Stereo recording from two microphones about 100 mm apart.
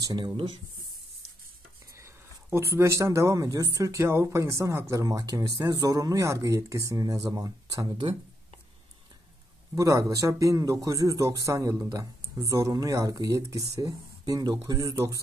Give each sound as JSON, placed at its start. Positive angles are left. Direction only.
{"t": 0.0, "sound": "speech", "side_deg": -50}
{"t": 2.0, "sound": "speech", "side_deg": -30}
{"t": 9.8, "sound": "speech", "side_deg": -35}